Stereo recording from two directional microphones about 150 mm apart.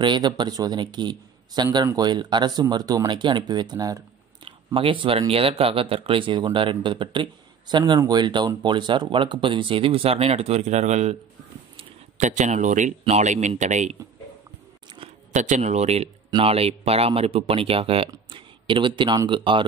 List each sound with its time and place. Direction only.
0.0 s speech: 30° right (ahead or behind)
4.7 s speech: 35° right (ahead or behind)
12.2 s speech: 55° right (ahead or behind)
15.3 s speech: 50° right (ahead or behind); by 19.6 s 35° right (ahead or behind)